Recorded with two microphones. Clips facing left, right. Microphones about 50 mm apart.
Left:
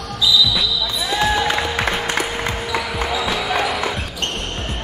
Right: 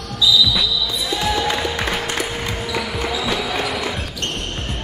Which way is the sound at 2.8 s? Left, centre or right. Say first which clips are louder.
Left 1 dB; centre.